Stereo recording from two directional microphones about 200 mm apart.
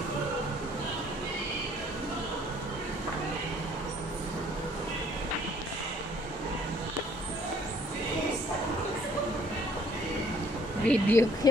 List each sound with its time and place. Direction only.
10.9 s speech: 10° left (ahead or behind)